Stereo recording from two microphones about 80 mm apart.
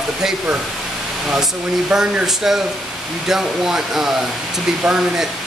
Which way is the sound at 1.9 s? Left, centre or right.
Centre.